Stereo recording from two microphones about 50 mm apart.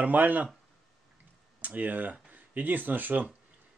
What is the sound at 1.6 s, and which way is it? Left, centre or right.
Speech, right.